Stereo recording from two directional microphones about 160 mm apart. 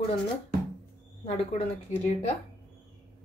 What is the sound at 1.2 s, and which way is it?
A woman's voice, 45° left (ahead or behind).